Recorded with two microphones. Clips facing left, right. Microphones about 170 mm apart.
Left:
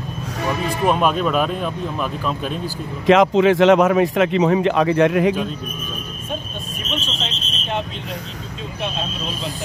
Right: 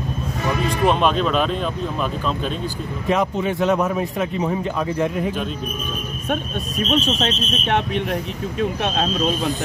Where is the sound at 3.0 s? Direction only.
90° left.